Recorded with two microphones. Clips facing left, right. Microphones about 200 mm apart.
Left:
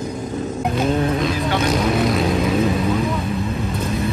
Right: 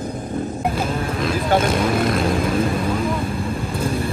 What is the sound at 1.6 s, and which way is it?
Vehicle, centre (ahead or behind).